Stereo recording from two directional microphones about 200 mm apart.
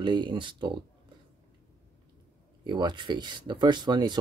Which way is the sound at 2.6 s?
20° right (ahead or behind).